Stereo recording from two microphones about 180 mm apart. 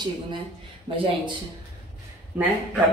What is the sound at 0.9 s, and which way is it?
Speech, 30° right (ahead or behind).